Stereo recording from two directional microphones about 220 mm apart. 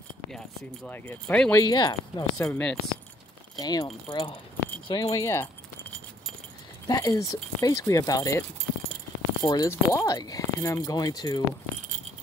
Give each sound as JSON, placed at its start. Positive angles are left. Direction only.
{"t": 0.8, "sound": "speech", "side_deg": 5}
{"t": 1.6, "sound": "speech", "side_deg": 20}
{"t": 3.5, "sound": "speech", "side_deg": 20}
{"t": 6.9, "sound": "speech", "side_deg": 15}